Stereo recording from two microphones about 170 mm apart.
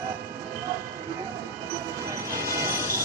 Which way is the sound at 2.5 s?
15° right (ahead or behind).